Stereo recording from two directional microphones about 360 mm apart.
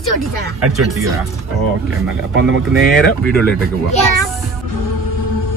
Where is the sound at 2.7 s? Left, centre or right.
Centre.